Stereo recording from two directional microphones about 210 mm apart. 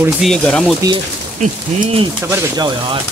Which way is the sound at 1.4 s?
30° right (ahead or behind).